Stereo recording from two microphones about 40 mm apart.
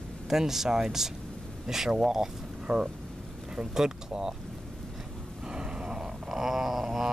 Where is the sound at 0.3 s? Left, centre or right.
Centre.